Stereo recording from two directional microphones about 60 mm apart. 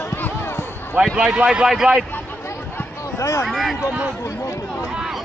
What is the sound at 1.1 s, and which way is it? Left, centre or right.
Speech, centre.